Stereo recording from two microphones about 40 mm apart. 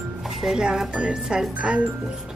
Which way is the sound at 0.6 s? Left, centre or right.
Right.